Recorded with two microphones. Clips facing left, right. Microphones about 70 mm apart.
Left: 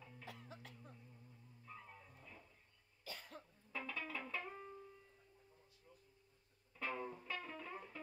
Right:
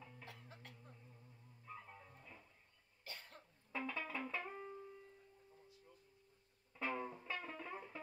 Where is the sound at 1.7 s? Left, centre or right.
Centre.